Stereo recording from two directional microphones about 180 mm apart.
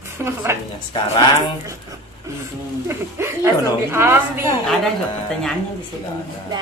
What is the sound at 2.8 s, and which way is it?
A woman's voice, 15° right (ahead or behind).